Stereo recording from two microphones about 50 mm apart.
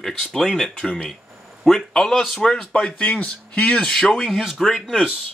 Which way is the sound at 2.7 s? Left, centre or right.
Left.